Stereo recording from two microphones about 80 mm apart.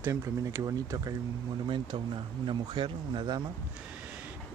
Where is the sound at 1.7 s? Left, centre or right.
Right.